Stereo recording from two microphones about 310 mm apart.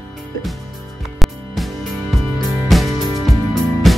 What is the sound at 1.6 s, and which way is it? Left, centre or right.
Music, centre.